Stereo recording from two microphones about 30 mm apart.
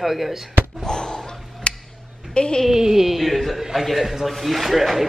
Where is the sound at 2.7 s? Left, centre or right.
Centre.